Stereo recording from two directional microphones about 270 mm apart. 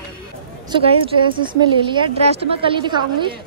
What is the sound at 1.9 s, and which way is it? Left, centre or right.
A woman's voice, centre.